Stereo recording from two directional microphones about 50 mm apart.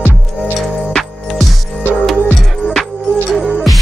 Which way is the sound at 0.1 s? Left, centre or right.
Centre.